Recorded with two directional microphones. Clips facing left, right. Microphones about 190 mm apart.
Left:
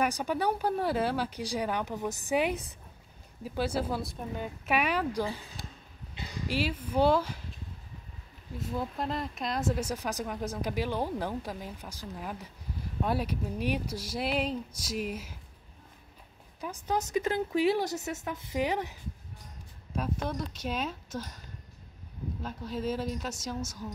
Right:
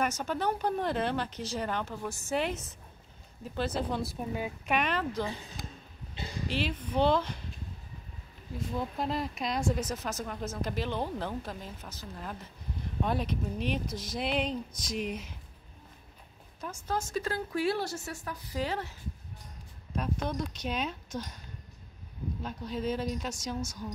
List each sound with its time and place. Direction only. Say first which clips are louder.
0.0 s a woman's voice: left 2 dB; 10° left (ahead or behind); by 4.5 s 5° right (ahead or behind)
4.6 s speech: left 2 dB; 10° left (ahead or behind)
6.4 s speech: left 2 dB; 10° left (ahead or behind)
8.5 s speech: even; centre (ahead or behind)
16.6 s speech: left 2 dB; 10° left (ahead or behind)
20.0 s a woman's voice: even; 5° left (ahead or behind)
22.4 s a woman's voice: even; 5° left (ahead or behind)